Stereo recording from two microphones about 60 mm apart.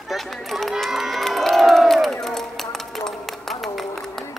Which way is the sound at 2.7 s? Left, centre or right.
Centre.